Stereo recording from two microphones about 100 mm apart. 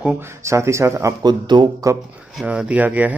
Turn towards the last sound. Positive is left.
turn(degrees=-15)  # may be behind; listen again after turning